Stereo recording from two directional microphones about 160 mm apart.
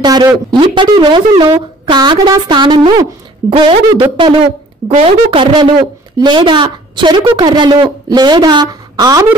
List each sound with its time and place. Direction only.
0.0 s speech: 25° right (ahead or behind)